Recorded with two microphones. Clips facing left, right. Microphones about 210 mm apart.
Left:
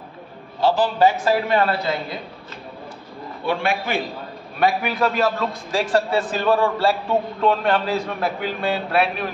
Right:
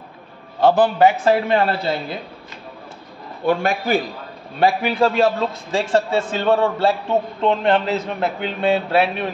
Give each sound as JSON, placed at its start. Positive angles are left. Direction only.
{"t": 0.6, "sound": "a man's voice", "side_deg": -55}
{"t": 1.0, "sound": "a man's voice", "side_deg": -30}
{"t": 3.4, "sound": "a man's voice", "side_deg": -40}
{"t": 4.6, "sound": "a man's voice", "side_deg": -30}